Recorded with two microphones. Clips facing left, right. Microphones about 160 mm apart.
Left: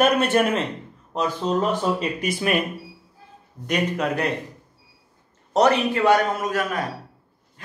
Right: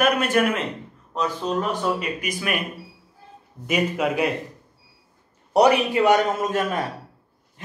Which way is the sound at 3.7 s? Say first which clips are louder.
Right 1 dB; 5° right (ahead or behind).